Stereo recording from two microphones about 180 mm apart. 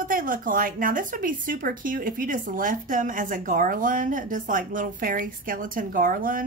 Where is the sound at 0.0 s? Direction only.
50° right (ahead or behind).